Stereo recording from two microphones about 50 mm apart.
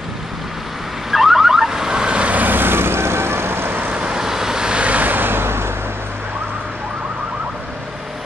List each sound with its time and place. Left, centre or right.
1.1 s car alarm: centre; by 3.9 s right
3.9 s vehicle: centre; by 5.7 s right